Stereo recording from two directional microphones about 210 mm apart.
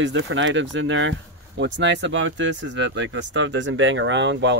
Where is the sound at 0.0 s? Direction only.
60° right (ahead or behind).